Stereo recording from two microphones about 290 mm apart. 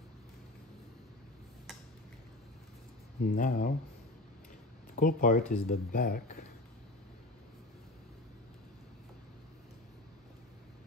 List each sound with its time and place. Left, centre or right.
3.3 s speech: left
4.9 s speech: left